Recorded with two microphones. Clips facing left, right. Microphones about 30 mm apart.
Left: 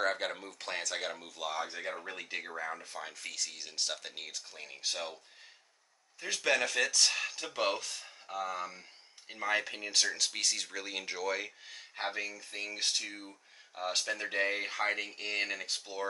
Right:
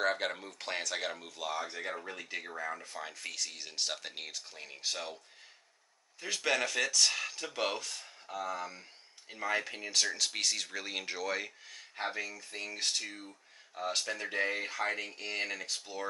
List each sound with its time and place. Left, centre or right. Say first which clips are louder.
0.0 s speech: right 1 dB; centre
2.0 s speech: left 1 dB; centre
6.2 s speech: left 1 dB; centre
10.0 s speech: even; centre
11.6 s speech: even; centre
15.8 s speech: left 2 dB; centre